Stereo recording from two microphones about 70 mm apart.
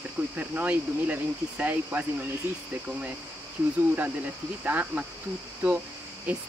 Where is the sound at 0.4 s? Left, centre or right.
Right.